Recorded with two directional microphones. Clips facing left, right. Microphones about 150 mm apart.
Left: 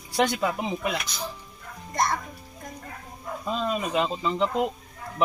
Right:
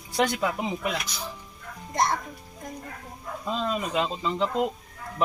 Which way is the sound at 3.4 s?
5° left (ahead or behind).